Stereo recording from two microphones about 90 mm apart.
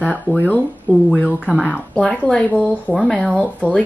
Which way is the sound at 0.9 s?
20° left (ahead or behind).